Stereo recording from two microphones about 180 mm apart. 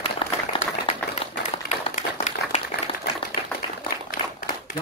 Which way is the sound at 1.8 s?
35° left (ahead or behind).